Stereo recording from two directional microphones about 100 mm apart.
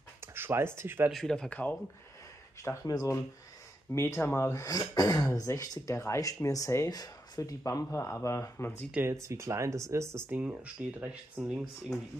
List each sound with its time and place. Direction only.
0.2 s speech: 25° right (ahead or behind)
1.1 s speech: 5° left (ahead or behind)
2.6 s speech: 25° left (ahead or behind)
3.9 s speech: 25° left (ahead or behind)
9.0 s speech: 30° right (ahead or behind)
10.3 s speech: 15° right (ahead or behind)
11.9 s speech: 5° left (ahead or behind)